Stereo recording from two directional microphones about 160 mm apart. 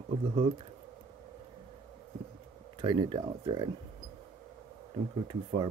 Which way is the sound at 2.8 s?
30° right (ahead or behind).